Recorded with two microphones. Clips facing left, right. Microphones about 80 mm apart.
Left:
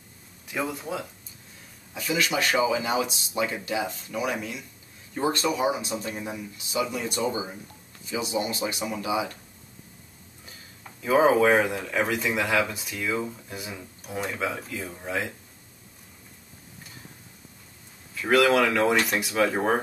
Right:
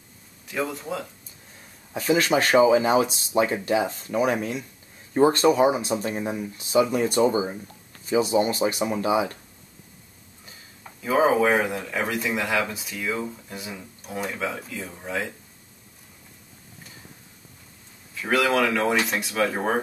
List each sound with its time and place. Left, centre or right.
0.5 s speech: centre
2.0 s speech: right
10.8 s speech: centre
18.1 s speech: centre